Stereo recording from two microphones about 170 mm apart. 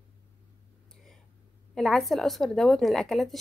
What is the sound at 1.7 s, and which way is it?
Speech, centre (ahead or behind).